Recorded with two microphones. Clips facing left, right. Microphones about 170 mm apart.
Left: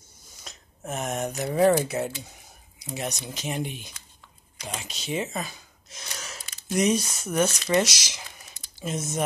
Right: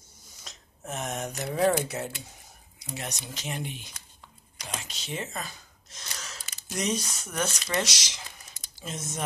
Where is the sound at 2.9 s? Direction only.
15° left (ahead or behind).